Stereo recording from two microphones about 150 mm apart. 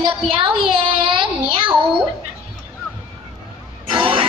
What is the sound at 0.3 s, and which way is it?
Child singing, 35° right (ahead or behind).